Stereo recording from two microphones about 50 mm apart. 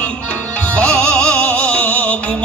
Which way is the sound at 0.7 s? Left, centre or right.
Left.